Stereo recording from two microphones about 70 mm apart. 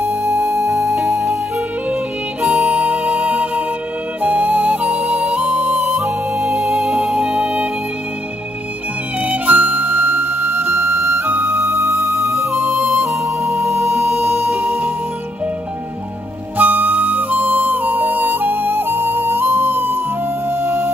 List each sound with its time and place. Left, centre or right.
0.0 s music: centre
0.5 s music: right
0.7 s music: centre
2.5 s music: centre
5.9 s music: right
6.3 s music: centre
9.2 s music: right
11.2 s music: right
11.5 s music: right
12.5 s music: centre
13.1 s music: right
16.5 s flute: right
20.4 s music: right